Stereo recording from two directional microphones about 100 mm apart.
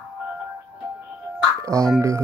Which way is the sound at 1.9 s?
30° right (ahead or behind).